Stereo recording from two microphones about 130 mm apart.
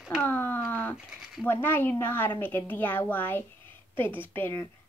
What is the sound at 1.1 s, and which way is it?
Speech, 5° right (ahead or behind).